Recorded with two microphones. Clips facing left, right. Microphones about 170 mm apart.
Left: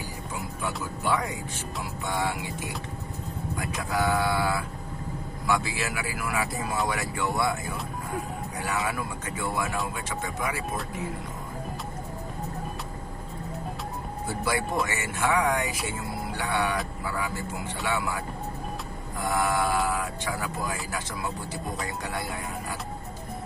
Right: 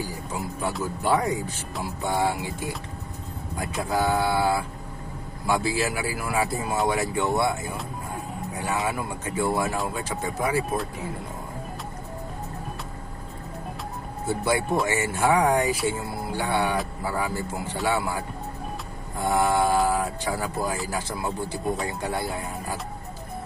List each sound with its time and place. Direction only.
1.0 s speech: 40° right (ahead or behind)
2.1 s speech: 25° right (ahead or behind)
14.2 s speech: 25° right (ahead or behind)
19.1 s speech: 25° right (ahead or behind)
21.8 s speech: 30° right (ahead or behind)